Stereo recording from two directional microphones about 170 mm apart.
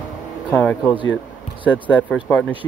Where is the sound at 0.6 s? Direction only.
10° left (ahead or behind).